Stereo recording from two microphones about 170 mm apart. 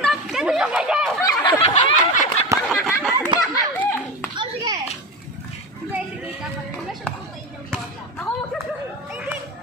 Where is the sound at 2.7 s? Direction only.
Centre (ahead or behind).